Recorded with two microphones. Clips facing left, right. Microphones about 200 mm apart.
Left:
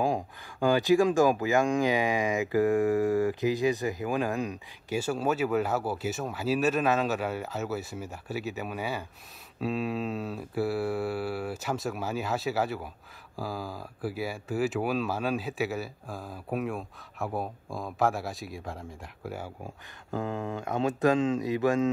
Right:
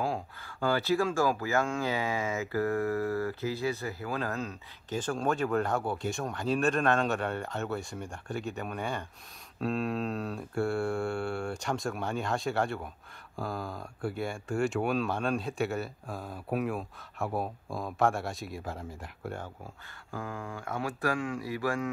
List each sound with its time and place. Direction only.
0.0 s speech: 15° left (ahead or behind)
19.6 s speech: 20° left (ahead or behind)